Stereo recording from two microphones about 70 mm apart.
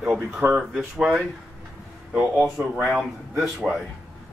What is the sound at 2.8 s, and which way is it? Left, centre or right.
Speech, centre.